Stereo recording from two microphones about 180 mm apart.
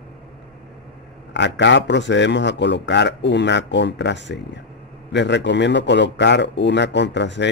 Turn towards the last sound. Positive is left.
turn(degrees=75)  # may be behind; listen again after turning